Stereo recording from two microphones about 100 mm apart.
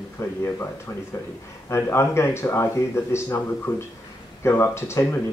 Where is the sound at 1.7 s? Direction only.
25° left (ahead or behind).